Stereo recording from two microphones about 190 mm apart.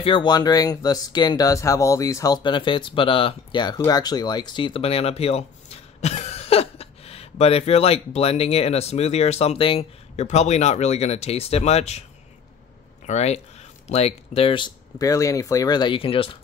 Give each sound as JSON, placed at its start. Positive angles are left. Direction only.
{"t": 0.0, "sound": "speech", "side_deg": 25}
{"t": 13.0, "sound": "speech", "side_deg": 35}